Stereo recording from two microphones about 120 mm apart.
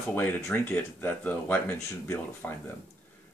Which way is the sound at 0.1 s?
15° left (ahead or behind).